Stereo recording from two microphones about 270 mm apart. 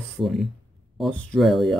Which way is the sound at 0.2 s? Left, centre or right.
Centre.